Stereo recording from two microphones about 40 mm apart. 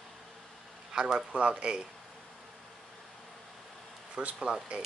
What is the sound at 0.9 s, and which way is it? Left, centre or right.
Speech, centre.